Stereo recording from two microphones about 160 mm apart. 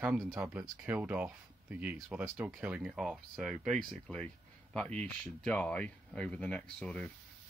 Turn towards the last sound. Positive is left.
turn(degrees=5)  # may be behind; listen again after turning